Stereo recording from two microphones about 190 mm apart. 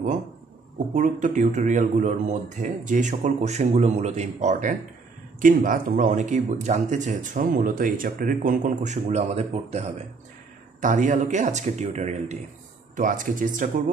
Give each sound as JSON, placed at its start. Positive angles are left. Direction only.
{"t": 0.9, "sound": "a man's voice", "side_deg": -40}